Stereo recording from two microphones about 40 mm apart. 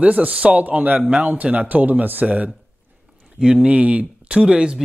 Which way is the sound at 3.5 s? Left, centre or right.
Right.